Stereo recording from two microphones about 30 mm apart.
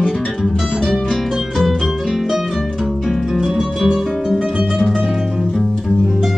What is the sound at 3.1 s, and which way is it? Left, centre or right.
Music, centre.